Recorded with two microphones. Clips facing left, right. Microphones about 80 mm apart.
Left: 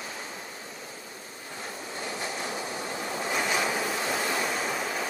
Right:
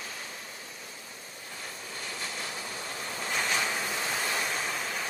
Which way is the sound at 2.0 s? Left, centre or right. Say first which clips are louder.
Left 5 dB; left.